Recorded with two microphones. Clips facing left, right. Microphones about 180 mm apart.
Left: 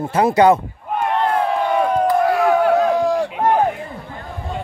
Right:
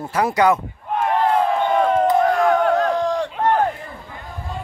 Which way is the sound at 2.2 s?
5° left (ahead or behind).